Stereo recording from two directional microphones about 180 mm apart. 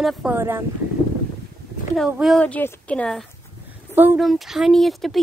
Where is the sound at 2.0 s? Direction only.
5° right (ahead or behind).